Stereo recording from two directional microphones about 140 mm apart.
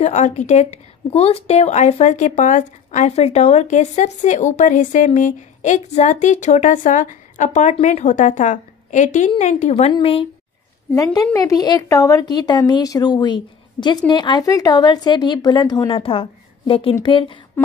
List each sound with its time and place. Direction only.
0.0 s a woman's voice: 55° left (ahead or behind)
11.3 s a woman's voice: 25° left (ahead or behind)